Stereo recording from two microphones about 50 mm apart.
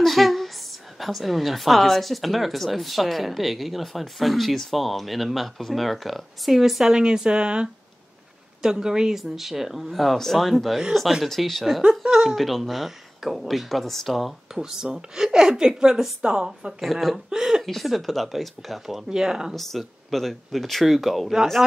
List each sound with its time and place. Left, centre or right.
0.0 s a woman's voice: centre
11.8 s a woman's voice: centre
12.4 s a woman's voice: centre
14.5 s a woman's voice: centre
16.8 s a woman's voice: centre
17.3 s a sound: centre
17.6 s a woman's voice: centre
19.5 s a woman's voice: centre